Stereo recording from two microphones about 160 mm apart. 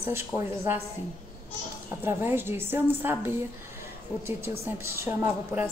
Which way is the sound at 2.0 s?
15° right (ahead or behind).